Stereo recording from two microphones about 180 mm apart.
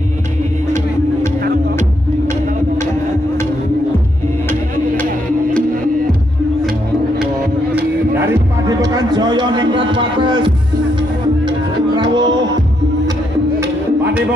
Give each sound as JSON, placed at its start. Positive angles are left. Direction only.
{"t": 0.7, "sound": "music", "side_deg": -45}
{"t": 7.7, "sound": "music", "side_deg": -15}
{"t": 11.9, "sound": "music", "side_deg": -25}
{"t": 13.6, "sound": "music", "side_deg": -10}